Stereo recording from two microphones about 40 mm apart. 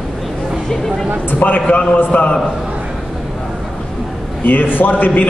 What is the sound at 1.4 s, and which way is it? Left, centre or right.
Speech, left.